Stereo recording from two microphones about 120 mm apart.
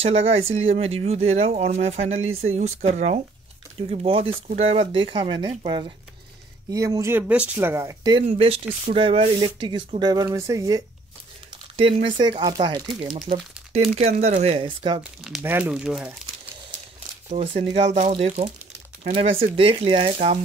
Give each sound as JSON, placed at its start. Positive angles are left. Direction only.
{"t": 0.0, "sound": "speech", "side_deg": -55}
{"t": 3.9, "sound": "speech", "side_deg": -50}
{"t": 6.7, "sound": "speech", "side_deg": -25}
{"t": 7.2, "sound": "speech", "side_deg": -15}
{"t": 8.2, "sound": "speech", "side_deg": -50}
{"t": 11.7, "sound": "speech", "side_deg": -45}
{"t": 13.9, "sound": "speech", "side_deg": -65}
{"t": 14.6, "sound": "speech", "side_deg": -45}
{"t": 15.4, "sound": "speech", "side_deg": -15}
{"t": 17.3, "sound": "speech", "side_deg": -70}
{"t": 19.1, "sound": "speech", "side_deg": -50}